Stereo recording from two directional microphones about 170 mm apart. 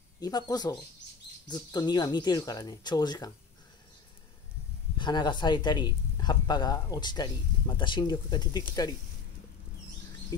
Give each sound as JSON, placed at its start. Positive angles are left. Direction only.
{"t": 0.2, "sound": "speech", "side_deg": 25}
{"t": 4.9, "sound": "speech", "side_deg": 25}